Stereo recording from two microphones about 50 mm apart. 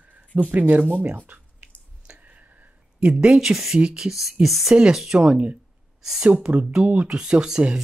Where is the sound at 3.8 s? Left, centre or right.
Centre.